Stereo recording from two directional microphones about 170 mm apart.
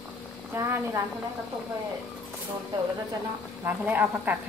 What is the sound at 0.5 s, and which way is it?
Speech, 20° right (ahead or behind).